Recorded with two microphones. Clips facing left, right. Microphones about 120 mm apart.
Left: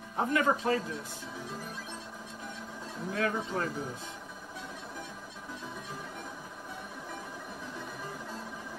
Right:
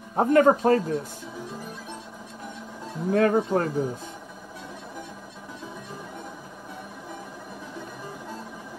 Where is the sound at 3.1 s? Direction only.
50° right (ahead or behind).